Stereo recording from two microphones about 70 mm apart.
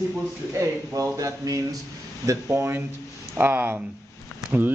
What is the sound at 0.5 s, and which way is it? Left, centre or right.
Speech, right.